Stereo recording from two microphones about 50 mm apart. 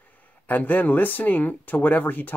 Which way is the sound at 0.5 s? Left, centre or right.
Left.